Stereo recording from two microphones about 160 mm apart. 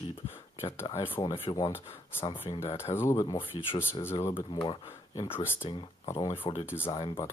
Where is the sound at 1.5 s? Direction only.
35° left (ahead or behind).